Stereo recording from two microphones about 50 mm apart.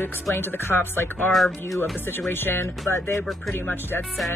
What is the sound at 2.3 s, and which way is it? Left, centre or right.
Speech, left.